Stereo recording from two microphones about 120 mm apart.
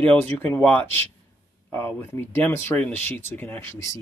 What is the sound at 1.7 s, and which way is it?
Speech, 20° left (ahead or behind).